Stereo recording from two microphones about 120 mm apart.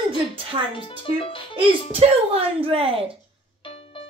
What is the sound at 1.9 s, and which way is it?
Speech, 55° right (ahead or behind).